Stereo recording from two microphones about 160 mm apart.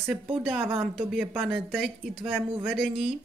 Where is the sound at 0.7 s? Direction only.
35° right (ahead or behind).